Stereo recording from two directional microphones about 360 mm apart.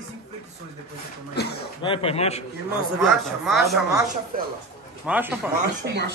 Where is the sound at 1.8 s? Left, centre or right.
Centre.